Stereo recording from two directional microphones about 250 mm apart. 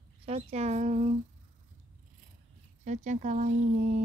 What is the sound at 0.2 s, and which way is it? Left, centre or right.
Speech, right.